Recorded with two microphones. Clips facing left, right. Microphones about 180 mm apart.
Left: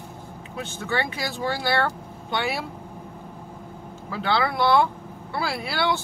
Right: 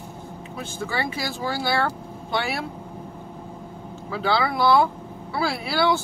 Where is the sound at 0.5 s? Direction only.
Centre (ahead or behind).